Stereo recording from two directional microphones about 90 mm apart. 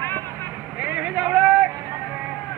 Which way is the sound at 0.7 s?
15° right (ahead or behind).